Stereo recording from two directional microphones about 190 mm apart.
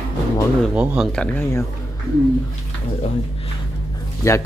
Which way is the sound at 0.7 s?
5° right (ahead or behind).